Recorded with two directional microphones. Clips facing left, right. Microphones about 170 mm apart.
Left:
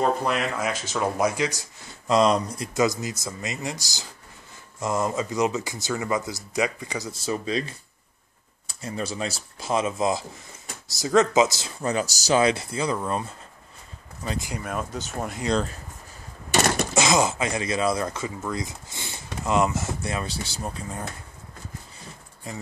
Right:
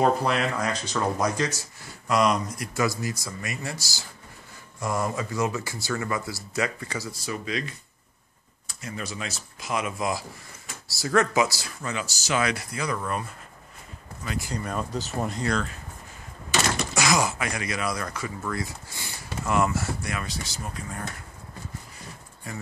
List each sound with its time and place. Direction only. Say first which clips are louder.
0.0 s speech: right 1 dB; centre (ahead or behind)
2.0 s speech: left 3 dB; 30° left (ahead or behind)
2.7 s speech: left 3 dB; 20° left (ahead or behind)
8.8 s speech: left 5 dB; 30° left (ahead or behind)
11.8 s speech: left 7 dB; 40° left (ahead or behind)
14.4 s speech: even; 10° left (ahead or behind)
16.9 s speech: left 2 dB; 25° left (ahead or behind)